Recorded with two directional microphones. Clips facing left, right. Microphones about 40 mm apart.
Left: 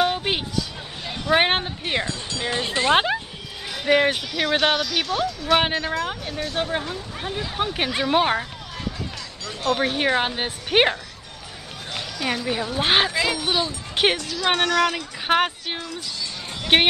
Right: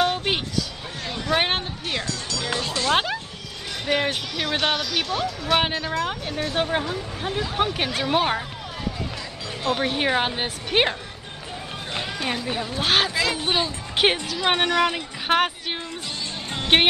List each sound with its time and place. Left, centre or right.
0.0 s a sound: centre
1.2 s music: centre
3.8 s speech: centre
7.7 s speech: centre
9.8 s speech: centre
10.7 s speech: centre
12.7 s speech: centre
13.4 s a woman's voice: right
15.2 s speech: centre